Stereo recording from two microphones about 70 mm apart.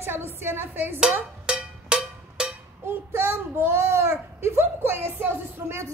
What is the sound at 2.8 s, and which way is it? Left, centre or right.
Child singing, right.